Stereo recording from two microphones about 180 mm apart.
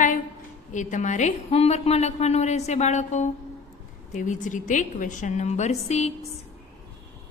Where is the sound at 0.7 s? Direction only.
45° left (ahead or behind).